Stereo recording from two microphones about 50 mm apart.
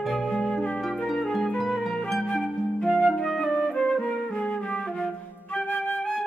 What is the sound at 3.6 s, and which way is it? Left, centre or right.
Music, centre.